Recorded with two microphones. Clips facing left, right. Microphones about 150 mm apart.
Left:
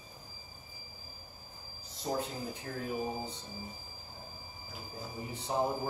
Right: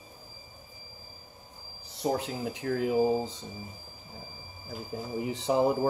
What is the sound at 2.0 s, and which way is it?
Speech, 85° right.